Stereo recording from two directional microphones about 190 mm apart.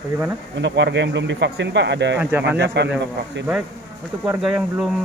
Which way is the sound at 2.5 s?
65° right (ahead or behind).